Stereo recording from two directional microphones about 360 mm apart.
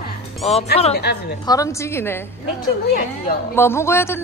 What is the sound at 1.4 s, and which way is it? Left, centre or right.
Speech, centre.